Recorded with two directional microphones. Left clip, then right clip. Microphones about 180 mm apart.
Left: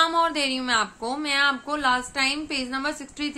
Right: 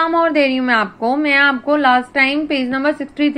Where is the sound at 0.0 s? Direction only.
20° right (ahead or behind).